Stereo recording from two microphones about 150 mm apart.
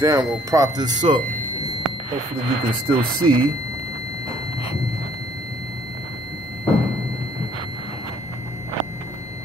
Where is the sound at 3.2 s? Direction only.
30° right (ahead or behind).